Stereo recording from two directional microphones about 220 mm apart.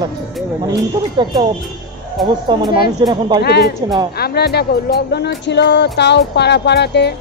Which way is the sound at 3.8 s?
20° right (ahead or behind).